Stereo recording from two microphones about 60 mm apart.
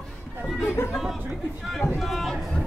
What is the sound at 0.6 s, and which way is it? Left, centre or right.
Speech, left.